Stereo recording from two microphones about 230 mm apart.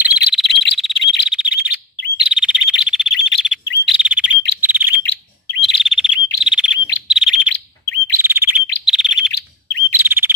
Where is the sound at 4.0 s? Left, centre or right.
Centre.